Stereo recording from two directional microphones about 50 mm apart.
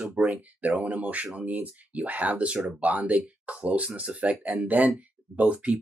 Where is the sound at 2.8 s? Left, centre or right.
Right.